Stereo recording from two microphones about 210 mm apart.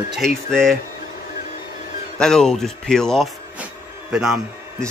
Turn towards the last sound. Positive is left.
turn(degrees=0)  # may be behind; listen again after turning